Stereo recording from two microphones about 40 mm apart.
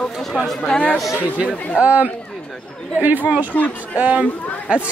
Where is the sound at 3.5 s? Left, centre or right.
Left.